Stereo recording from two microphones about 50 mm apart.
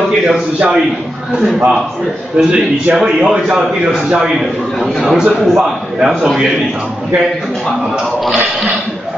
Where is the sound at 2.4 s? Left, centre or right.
Right.